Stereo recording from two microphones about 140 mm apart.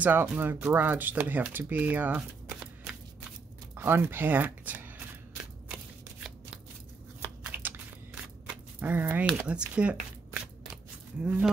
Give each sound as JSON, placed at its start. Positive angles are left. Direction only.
{"t": 0.0, "sound": "speech", "side_deg": -10}
{"t": 7.5, "sound": "a sound", "side_deg": -10}
{"t": 9.4, "sound": "speech", "side_deg": -10}